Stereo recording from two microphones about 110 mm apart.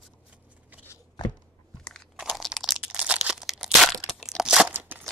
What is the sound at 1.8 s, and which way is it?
Crunch, 5° left (ahead or behind).